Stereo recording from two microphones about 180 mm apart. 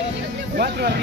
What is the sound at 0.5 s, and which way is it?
Speech, 65° right (ahead or behind).